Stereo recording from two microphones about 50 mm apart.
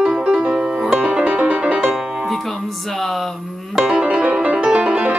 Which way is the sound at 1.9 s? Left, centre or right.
Centre.